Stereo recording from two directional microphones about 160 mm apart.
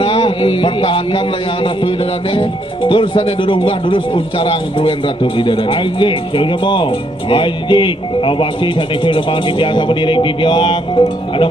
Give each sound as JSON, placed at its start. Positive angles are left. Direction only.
{"t": 0.0, "sound": "a man's voice", "side_deg": 30}